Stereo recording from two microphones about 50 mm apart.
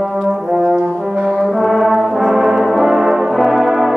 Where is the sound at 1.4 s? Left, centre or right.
Centre.